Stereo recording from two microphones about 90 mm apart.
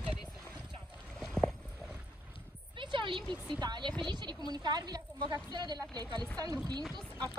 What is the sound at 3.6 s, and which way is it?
A woman's voice, 55° right (ahead or behind).